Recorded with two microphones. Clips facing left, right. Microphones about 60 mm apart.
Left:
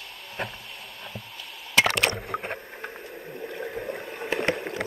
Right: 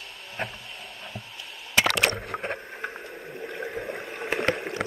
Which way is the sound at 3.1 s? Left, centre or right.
Right.